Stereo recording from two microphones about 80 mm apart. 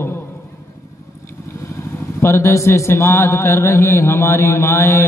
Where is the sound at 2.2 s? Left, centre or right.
Left.